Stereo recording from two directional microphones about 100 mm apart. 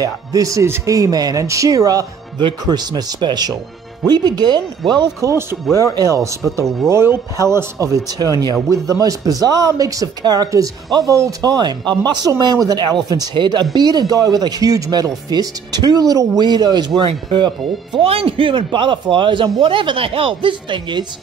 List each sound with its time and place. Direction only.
0.0 s speech: 35° right (ahead or behind)
5.2 s speech: 25° right (ahead or behind); by 17.5 s 50° right (ahead or behind)
17.9 s a man's voice: 65° right (ahead or behind)